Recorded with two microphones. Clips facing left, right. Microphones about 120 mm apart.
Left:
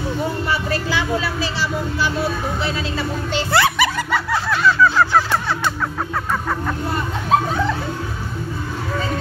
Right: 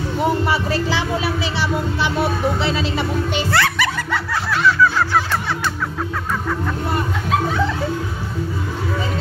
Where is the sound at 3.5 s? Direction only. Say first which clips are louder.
Left 4 dB; 15° left (ahead or behind).